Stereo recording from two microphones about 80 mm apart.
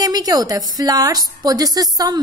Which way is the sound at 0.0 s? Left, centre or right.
Right.